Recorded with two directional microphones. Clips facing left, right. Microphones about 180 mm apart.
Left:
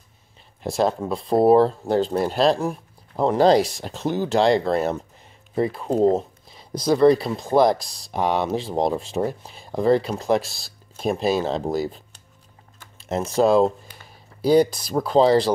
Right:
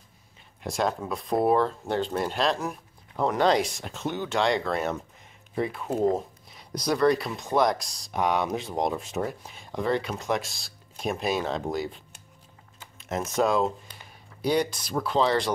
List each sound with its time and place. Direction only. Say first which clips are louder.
0.6 s speech: left 6 dB; 35° left (ahead or behind)